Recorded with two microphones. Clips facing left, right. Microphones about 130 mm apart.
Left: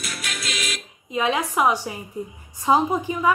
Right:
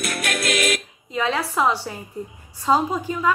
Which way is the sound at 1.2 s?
15° left (ahead or behind).